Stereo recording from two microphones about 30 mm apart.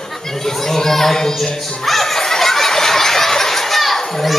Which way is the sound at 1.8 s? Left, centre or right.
Centre.